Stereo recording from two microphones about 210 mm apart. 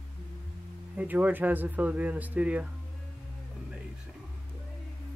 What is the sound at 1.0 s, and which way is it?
Speech, 10° right (ahead or behind).